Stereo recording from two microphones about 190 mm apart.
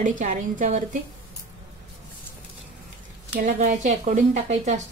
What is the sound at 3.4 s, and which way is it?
Speech, 40° right (ahead or behind).